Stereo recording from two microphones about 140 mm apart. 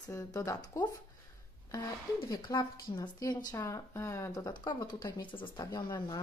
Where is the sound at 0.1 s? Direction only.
25° left (ahead or behind).